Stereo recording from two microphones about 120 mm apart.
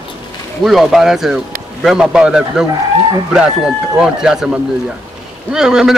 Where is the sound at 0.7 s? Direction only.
Centre (ahead or behind).